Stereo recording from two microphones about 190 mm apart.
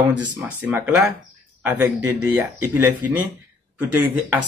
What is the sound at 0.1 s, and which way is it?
Speech, 5° right (ahead or behind).